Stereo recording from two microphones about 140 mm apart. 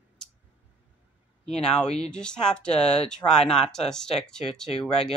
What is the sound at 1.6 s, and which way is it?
Speech, 5° left (ahead or behind).